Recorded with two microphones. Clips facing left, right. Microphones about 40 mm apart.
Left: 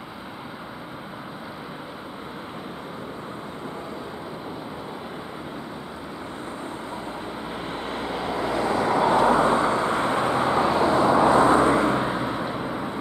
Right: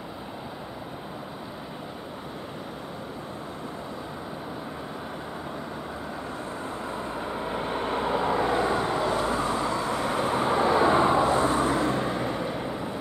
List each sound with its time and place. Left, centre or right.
8.1 s vehicle: centre
8.8 s vehicle: left
10.7 s vehicle: right
11.1 s vehicle: left